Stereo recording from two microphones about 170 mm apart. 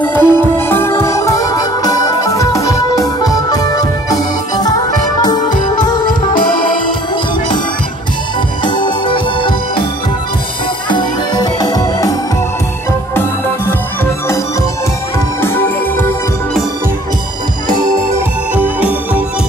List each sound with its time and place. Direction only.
0.0 s music: 10° left (ahead or behind)
8.6 s organ: 30° left (ahead or behind)
10.9 s music: 25° left (ahead or behind)
15.1 s music: 15° left (ahead or behind)
18.5 s organ: 10° right (ahead or behind)